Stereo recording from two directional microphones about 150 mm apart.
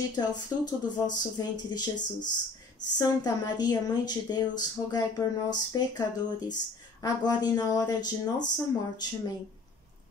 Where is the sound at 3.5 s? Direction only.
25° left (ahead or behind).